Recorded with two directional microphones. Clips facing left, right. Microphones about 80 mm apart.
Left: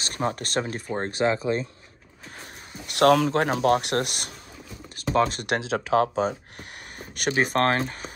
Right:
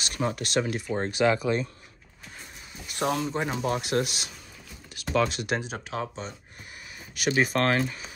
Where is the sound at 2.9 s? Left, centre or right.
Left.